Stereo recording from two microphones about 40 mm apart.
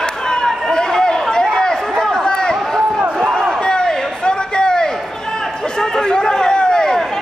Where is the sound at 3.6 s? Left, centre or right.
Centre.